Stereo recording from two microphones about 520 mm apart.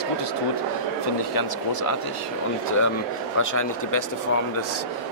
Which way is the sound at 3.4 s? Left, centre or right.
Left.